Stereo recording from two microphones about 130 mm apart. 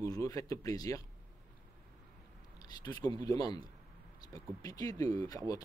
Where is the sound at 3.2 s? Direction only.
30° left (ahead or behind).